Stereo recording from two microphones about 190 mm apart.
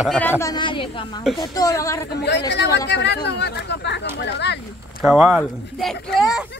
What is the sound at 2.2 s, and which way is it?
Speech, 60° left (ahead or behind).